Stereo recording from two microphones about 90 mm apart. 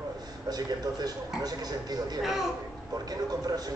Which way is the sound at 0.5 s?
45° right (ahead or behind).